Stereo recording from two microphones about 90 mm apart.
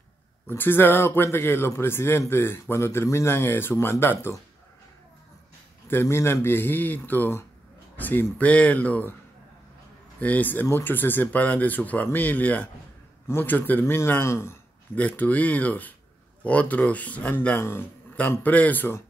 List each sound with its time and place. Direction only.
0.5 s a man's voice: 25° left (ahead or behind)
5.9 s a man's voice: 25° left (ahead or behind)
10.2 s a man's voice: 20° left (ahead or behind)
15.0 s a man's voice: 15° left (ahead or behind)